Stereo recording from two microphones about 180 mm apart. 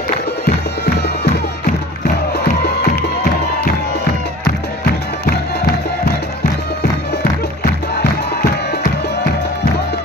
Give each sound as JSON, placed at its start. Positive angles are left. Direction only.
{"t": 0.5, "sound": "music", "side_deg": 60}
{"t": 7.6, "sound": "music", "side_deg": 65}